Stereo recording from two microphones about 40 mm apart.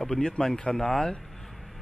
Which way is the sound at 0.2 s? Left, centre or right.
Left.